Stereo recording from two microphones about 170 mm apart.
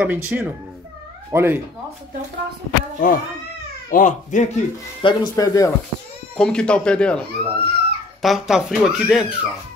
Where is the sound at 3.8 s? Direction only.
50° left (ahead or behind).